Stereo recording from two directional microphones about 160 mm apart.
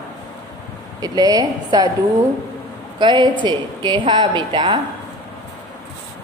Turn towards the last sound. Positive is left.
turn(degrees=-30)  # may be behind; listen again after turning